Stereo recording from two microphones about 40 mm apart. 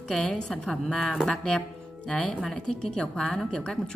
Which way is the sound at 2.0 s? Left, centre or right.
Left.